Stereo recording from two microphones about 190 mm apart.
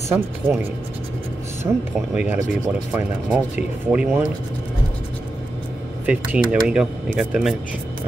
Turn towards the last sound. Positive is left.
turn(degrees=-5)  # may be behind; listen again after turning